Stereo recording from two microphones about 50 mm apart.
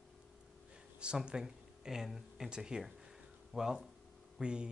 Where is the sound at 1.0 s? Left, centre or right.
Centre.